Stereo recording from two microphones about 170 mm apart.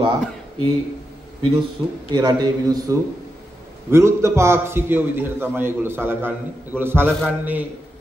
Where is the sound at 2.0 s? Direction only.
25° right (ahead or behind).